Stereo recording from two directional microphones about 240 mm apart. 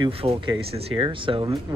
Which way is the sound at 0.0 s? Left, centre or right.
Right.